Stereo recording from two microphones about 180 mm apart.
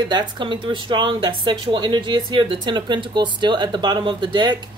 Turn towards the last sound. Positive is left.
turn(degrees=-25)  # may be behind; listen again after turning